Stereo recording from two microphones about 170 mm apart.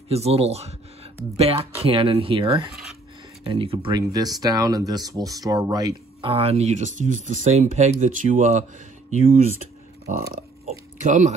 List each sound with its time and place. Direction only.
0.1 s speech: 35° right (ahead or behind)
6.3 s speech: 35° right (ahead or behind)
10.6 s oink: 45° right (ahead or behind)